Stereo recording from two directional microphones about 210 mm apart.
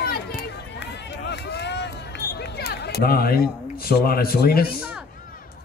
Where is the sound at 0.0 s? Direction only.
45° left (ahead or behind).